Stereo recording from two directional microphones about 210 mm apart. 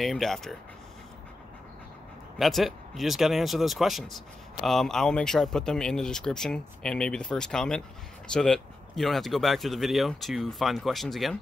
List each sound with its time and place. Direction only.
0.0 s speech: centre (ahead or behind)
2.3 s speech: centre (ahead or behind)